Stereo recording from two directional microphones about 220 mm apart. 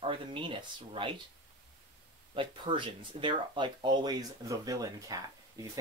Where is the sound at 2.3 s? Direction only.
20° right (ahead or behind).